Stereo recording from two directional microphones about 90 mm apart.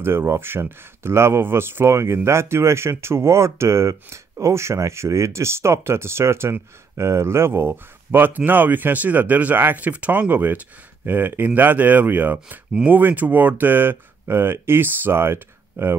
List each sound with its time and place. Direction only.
0.0 s speech: 25° right (ahead or behind)